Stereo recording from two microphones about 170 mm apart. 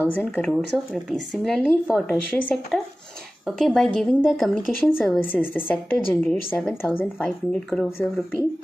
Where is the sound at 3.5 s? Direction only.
Centre (ahead or behind).